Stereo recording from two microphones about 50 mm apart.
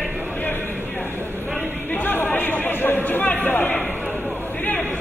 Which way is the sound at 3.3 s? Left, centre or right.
Left.